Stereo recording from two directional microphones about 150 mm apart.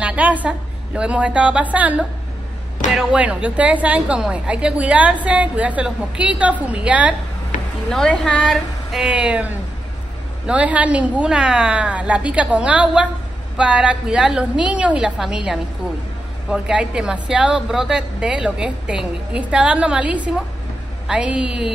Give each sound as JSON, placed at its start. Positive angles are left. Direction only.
{"t": 0.0, "sound": "a woman's voice", "side_deg": -10}
{"t": 7.5, "sound": "a sound", "side_deg": 60}
{"t": 7.9, "sound": "a woman's voice", "side_deg": 5}